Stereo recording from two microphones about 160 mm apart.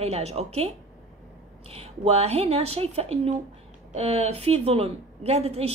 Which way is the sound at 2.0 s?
40° right (ahead or behind).